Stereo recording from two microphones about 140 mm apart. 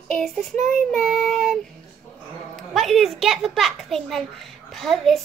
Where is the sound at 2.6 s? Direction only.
Centre (ahead or behind).